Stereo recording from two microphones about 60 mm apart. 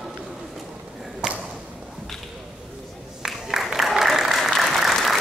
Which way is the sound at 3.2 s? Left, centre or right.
Centre.